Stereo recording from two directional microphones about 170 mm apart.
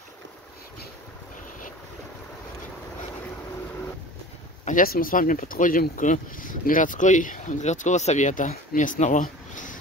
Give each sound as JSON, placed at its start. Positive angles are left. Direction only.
{"t": 4.6, "sound": "speech", "side_deg": 55}